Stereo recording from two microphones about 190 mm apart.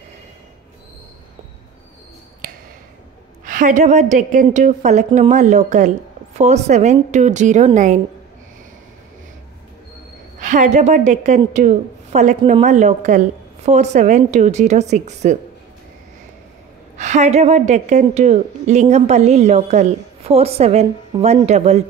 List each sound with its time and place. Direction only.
3.4 s a woman's voice: 45° right (ahead or behind)
10.4 s a woman's voice: 40° right (ahead or behind)
16.9 s a woman's voice: 40° right (ahead or behind)